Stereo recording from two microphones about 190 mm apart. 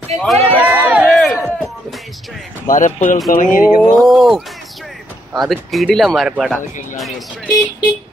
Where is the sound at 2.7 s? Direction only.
40° left (ahead or behind).